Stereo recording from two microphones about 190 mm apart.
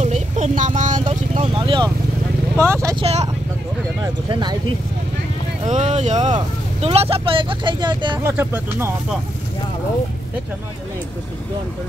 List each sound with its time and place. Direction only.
0.0 s vehicle: 35° right (ahead or behind)
2.5 s vehicle: 15° right (ahead or behind)
3.0 s vehicle: 35° right (ahead or behind)
4.0 s a sound: 25° right (ahead or behind)
5.7 s speech: 40° right (ahead or behind)
8.2 s speech: 15° right (ahead or behind)